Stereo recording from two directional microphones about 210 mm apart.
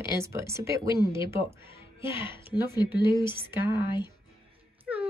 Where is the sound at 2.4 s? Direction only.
20° left (ahead or behind).